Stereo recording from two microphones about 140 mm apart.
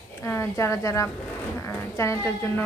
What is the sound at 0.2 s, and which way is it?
A woman's voice, 20° left (ahead or behind).